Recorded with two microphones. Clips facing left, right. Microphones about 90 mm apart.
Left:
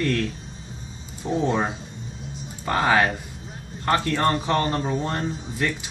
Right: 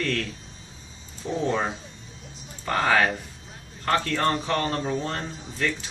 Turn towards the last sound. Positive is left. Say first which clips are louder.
# left 3 dB
turn(degrees=15)  # may be behind; listen again after turning